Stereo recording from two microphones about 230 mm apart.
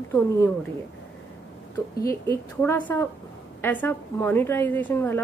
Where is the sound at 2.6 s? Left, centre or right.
Centre.